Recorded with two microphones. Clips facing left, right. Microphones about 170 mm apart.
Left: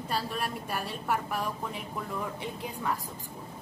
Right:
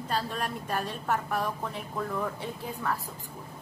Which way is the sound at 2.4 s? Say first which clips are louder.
Right 1 dB; 15° left (ahead or behind).